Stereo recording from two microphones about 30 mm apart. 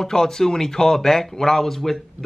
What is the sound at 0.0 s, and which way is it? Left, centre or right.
Speech, centre.